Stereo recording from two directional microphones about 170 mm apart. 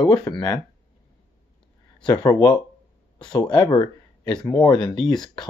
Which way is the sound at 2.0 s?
25° left (ahead or behind).